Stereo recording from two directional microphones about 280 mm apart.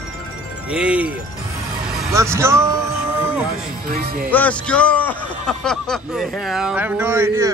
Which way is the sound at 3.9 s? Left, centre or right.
Right.